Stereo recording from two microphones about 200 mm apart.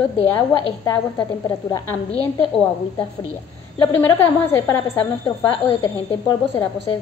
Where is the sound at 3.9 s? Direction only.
10° left (ahead or behind).